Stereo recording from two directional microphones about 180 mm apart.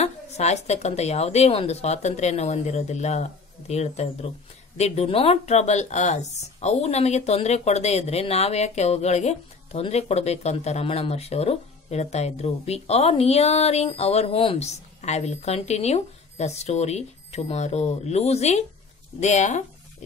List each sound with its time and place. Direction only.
0.0 s speech: 40° left (ahead or behind)